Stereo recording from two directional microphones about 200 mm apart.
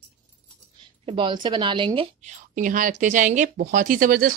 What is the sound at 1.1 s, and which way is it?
A woman's voice, 25° right (ahead or behind).